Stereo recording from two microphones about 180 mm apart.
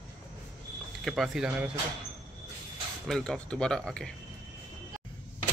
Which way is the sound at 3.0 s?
5° left (ahead or behind).